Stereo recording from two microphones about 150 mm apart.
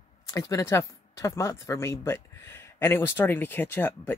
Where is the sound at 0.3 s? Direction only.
20° left (ahead or behind).